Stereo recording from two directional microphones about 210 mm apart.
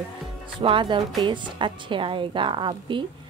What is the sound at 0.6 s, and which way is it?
A woman's voice, 25° right (ahead or behind).